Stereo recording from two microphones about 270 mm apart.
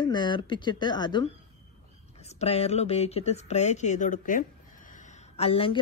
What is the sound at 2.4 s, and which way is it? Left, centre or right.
Speech, left.